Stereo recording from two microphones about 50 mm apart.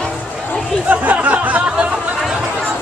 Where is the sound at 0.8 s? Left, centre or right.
Right.